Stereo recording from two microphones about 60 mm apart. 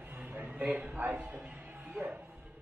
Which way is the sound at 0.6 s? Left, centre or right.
Right.